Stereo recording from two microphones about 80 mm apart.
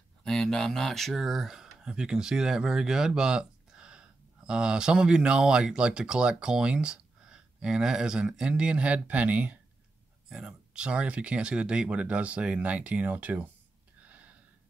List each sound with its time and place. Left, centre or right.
0.2 s speech: centre
14.0 s gasp: centre